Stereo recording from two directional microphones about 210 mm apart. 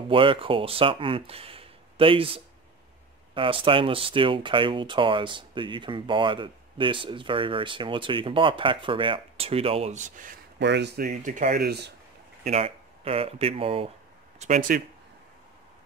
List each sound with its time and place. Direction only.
0.1 s speech: 25° right (ahead or behind)
10.6 s speech: 55° right (ahead or behind)
12.4 s speech: 30° right (ahead or behind)
14.4 s speech: 40° right (ahead or behind)